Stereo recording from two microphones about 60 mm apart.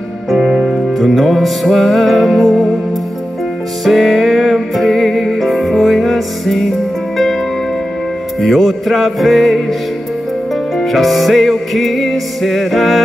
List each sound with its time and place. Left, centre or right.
0.3 s music: centre
3.8 s music: centre
8.4 s music: centre